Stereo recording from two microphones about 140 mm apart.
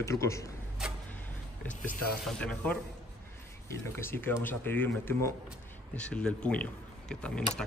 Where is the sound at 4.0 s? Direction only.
15° left (ahead or behind).